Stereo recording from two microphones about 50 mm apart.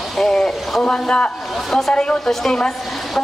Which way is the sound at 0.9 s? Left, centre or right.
Centre.